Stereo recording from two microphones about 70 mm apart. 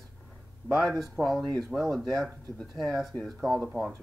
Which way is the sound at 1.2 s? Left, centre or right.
Centre.